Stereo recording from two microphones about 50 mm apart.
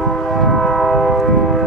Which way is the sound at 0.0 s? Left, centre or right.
Centre.